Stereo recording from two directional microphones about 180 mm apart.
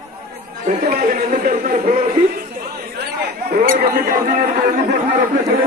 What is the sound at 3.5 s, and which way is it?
Speech, 50° right (ahead or behind).